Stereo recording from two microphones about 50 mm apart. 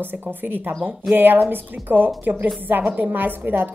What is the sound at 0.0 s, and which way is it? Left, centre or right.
A woman's voice, right.